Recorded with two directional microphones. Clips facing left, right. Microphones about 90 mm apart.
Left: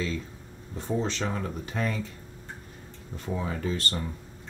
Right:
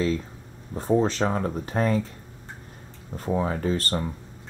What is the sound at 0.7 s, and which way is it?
Speech, 40° right (ahead or behind).